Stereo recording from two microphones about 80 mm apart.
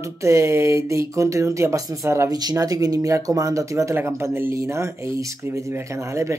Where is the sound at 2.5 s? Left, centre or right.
Right.